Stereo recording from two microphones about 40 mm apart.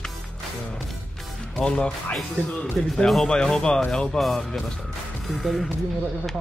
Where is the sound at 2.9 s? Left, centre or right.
Centre.